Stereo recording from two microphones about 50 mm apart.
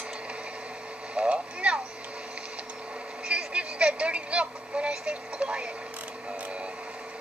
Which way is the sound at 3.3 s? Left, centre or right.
Right.